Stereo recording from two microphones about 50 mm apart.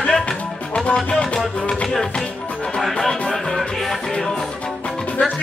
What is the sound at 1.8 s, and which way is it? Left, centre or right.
Music, centre.